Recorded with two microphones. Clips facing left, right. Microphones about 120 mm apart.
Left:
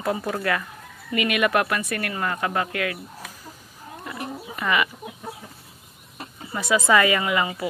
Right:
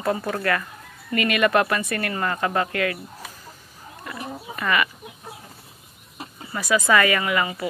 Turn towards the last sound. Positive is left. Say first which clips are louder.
# even
turn(degrees=20)  # may be behind; listen again after turning